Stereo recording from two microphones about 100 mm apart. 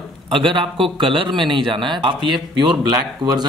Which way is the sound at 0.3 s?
50° right (ahead or behind).